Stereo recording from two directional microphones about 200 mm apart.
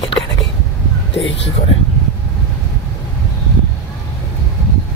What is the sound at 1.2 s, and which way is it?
Speech, 65° left (ahead or behind).